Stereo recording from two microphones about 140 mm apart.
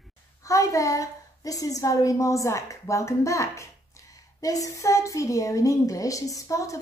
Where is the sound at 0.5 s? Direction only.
25° left (ahead or behind).